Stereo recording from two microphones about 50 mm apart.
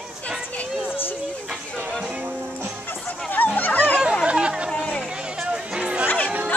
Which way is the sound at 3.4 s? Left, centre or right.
Left.